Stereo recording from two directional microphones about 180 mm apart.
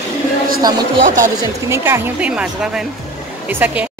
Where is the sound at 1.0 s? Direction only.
45° right (ahead or behind).